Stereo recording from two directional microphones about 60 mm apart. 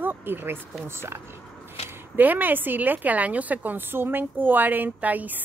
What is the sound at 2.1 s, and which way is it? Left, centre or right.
Speech, right.